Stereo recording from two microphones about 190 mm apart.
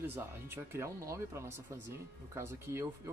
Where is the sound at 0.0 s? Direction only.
10° right (ahead or behind).